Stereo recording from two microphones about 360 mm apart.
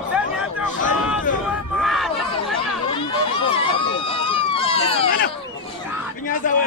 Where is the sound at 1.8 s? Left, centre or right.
Centre.